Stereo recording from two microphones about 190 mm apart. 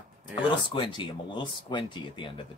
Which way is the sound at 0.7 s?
25° left (ahead or behind).